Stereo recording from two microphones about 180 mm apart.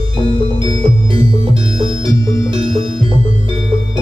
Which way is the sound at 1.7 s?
30° right (ahead or behind).